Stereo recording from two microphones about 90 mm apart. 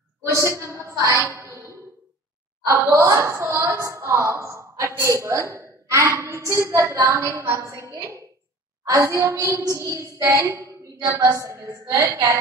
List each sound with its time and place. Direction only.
0.3 s a woman's voice: 35° right (ahead or behind)